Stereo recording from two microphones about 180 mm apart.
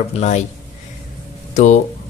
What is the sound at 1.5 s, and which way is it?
Speech, 40° left (ahead or behind).